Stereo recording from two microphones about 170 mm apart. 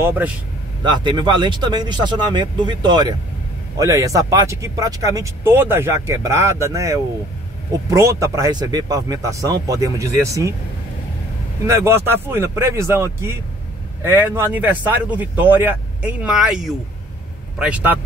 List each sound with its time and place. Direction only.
0.0 s speech: 15° right (ahead or behind)
0.8 s speech: 25° right (ahead or behind)
11.6 s speech: 15° right (ahead or behind)